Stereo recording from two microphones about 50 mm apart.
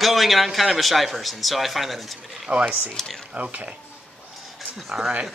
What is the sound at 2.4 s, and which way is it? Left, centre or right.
Speech, right.